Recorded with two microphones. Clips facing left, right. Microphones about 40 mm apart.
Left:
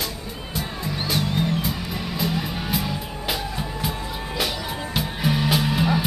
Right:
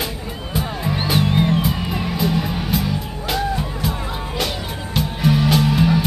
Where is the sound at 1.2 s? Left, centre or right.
Right.